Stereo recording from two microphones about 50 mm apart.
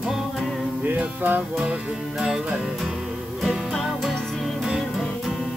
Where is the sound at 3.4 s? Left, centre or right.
Centre.